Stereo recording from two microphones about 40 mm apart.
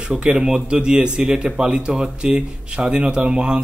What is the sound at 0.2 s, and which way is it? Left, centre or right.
Speech, right.